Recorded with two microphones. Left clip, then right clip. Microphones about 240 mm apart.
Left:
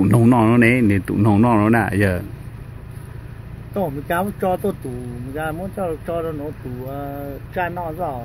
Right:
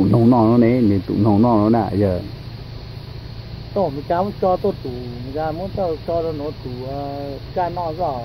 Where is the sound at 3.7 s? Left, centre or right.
Left.